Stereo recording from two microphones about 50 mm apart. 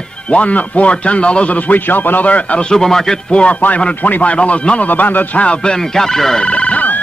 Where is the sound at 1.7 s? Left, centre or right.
Left.